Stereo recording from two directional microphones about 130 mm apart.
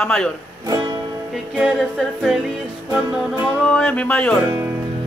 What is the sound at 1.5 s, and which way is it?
Music, centre (ahead or behind).